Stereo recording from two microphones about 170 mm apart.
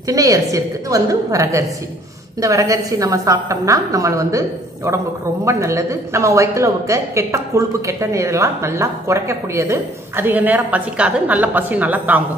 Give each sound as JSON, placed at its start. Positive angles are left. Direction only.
{"t": 0.0, "sound": "a woman's voice", "side_deg": -20}